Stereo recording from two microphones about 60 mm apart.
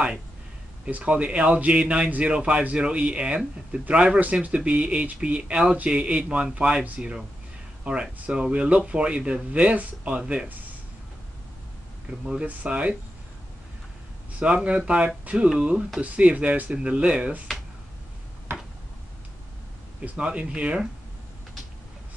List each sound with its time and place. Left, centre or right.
0.8 s a man's voice: right
12.6 s a man's voice: centre
14.4 s a man's voice: centre
18.5 s tick-tock: right
20.2 s a man's voice: centre